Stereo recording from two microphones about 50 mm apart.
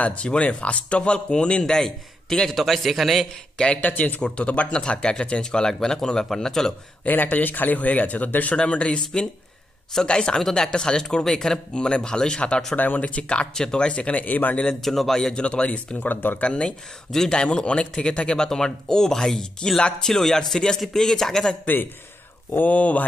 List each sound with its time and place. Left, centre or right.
0.0 s speech: left
2.5 s a man's voice: centre
3.5 s a man's voice: left
3.8 s speech: left
4.2 s speech: left
7.1 s speech: left
8.5 s speech: left
12.7 s speech: left
14.8 s a man's voice: centre
15.3 s speech: left
16.1 s speech: left
16.4 s speech: left
22.6 s speech: left